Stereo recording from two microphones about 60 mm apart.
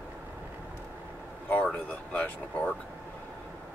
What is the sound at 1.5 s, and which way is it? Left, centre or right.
Speech, left.